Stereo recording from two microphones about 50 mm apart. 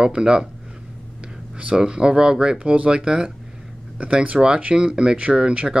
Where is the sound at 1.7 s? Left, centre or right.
Centre.